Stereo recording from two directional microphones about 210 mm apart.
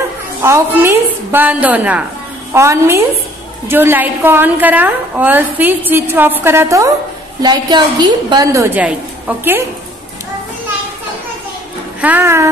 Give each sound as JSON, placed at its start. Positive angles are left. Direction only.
{"t": 0.4, "sound": "a woman's voice", "side_deg": -10}
{"t": 12.0, "sound": "a woman's voice", "side_deg": -10}